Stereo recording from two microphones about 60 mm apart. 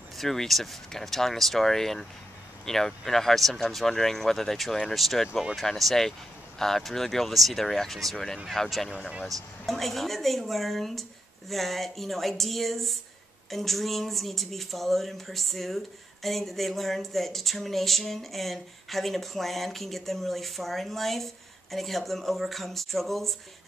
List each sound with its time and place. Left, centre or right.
0.2 s speech: centre
8.9 s speech: centre
9.2 s speech: centre